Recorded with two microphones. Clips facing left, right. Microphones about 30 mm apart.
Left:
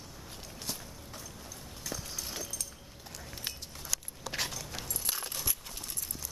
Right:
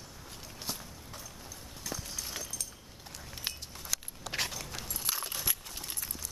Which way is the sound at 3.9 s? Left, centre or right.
Centre.